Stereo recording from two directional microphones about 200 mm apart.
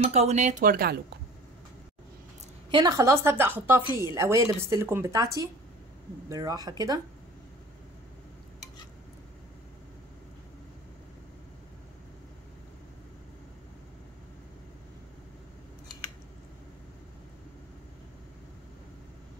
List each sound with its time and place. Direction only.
0.0 s speech: 30° right (ahead or behind)
2.7 s speech: 15° right (ahead or behind)